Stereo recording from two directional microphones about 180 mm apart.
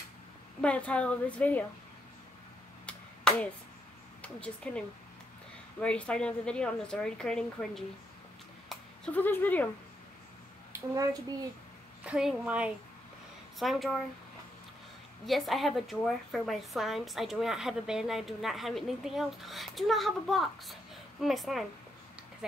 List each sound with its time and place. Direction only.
0.6 s a woman's voice: 5° left (ahead or behind)
2.9 s finger snapping: 5° left (ahead or behind)
4.2 s a woman's voice: 5° left (ahead or behind)
8.6 s a sound: 5° left (ahead or behind)
10.7 s a sound: 15° right (ahead or behind)
12.0 s a woman's voice: 5° right (ahead or behind)
15.2 s a woman's voice: centre (ahead or behind)